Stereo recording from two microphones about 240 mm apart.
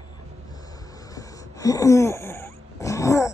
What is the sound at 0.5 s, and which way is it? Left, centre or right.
Wheeze, centre.